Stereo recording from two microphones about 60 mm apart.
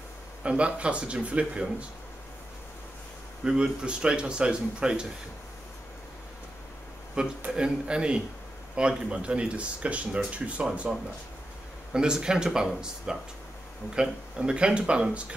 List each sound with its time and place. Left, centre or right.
0.4 s speech: centre
3.4 s speech: centre
7.2 s speech: centre
11.9 s speech: centre